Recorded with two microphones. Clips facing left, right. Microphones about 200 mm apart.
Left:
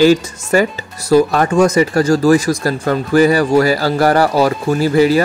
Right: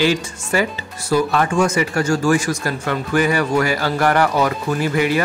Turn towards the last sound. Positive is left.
turn(degrees=35)  # may be behind; listen again after turning